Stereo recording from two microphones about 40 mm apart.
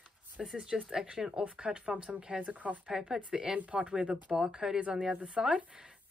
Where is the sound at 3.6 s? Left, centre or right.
Right.